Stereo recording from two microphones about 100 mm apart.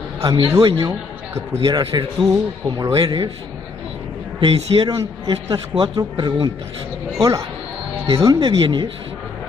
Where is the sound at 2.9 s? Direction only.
60° right (ahead or behind).